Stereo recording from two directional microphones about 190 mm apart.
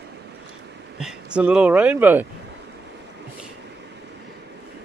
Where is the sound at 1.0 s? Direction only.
5° right (ahead or behind).